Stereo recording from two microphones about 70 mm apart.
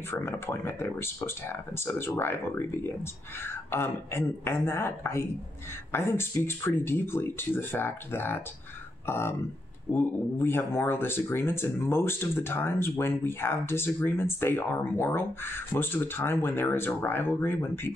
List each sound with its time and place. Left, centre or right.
0.2 s speech: left